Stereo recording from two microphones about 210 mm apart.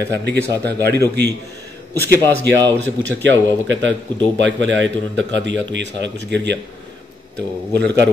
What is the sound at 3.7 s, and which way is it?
Speech, 60° right (ahead or behind).